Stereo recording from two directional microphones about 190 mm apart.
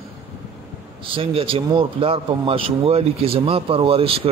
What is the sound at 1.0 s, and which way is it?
Speech, 30° right (ahead or behind).